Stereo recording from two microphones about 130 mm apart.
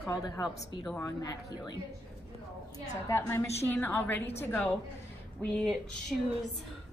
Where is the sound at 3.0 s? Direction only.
20° left (ahead or behind).